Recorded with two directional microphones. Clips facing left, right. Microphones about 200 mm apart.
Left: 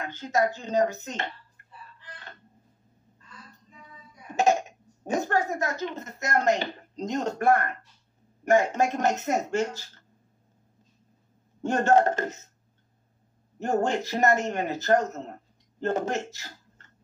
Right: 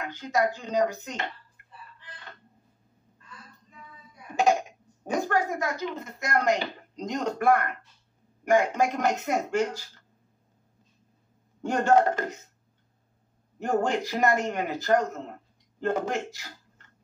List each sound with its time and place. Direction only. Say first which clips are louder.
0.1 s a man's voice: left 1 dB; 25° left (ahead or behind)
4.4 s a man's voice: even; 25° left (ahead or behind)
11.6 s a man's voice: even; 25° left (ahead or behind)
13.6 s a man's voice: even; 25° left (ahead or behind)